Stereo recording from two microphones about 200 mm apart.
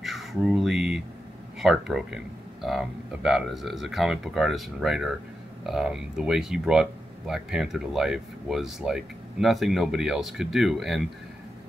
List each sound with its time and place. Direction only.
0.0 s speech: centre (ahead or behind)